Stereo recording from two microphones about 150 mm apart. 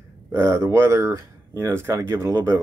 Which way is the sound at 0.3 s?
20° right (ahead or behind).